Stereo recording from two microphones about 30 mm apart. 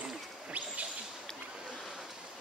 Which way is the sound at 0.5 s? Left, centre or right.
Right.